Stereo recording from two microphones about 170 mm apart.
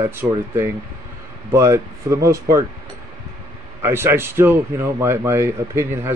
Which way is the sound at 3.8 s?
15° right (ahead or behind).